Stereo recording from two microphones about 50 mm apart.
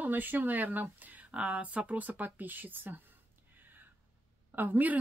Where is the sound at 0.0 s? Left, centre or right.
Right.